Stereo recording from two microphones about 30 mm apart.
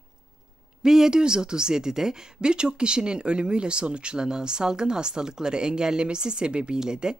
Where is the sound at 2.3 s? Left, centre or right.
Right.